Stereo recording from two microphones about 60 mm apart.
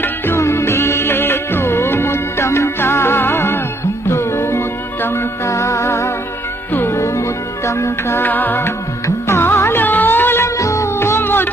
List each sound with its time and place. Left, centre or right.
0.4 s music: left
8.2 s music: left
8.6 s music: left
10.6 s music: left